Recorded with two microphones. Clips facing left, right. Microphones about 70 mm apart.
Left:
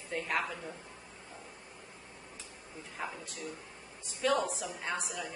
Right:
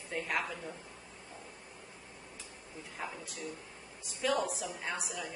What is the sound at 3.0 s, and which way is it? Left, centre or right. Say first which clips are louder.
Speech: left 2 dB; centre.